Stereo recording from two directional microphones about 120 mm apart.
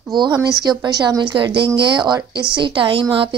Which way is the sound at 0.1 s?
40° right (ahead or behind).